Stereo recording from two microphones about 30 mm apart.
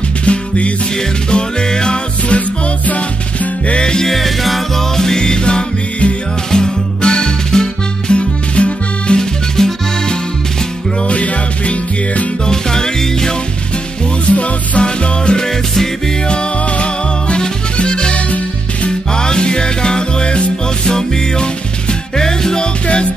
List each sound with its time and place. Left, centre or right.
0.2 s music: left
1.3 s music: left
2.9 s music: left
3.7 s music: left
4.1 s music: centre; by 8.2 s left
8.2 s music: left
9.2 s music: centre
11.1 s music: left
12.4 s music: left
14.3 s music: left
14.8 s music: left